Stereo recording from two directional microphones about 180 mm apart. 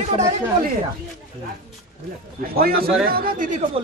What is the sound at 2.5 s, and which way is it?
A man's voice, 55° right (ahead or behind).